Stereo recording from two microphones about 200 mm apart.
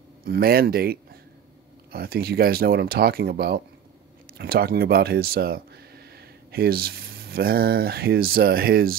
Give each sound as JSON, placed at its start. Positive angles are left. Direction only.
{"t": 0.2, "sound": "speech", "side_deg": -50}